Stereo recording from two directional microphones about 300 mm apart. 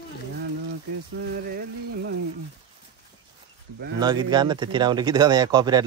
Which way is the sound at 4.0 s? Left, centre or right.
Centre.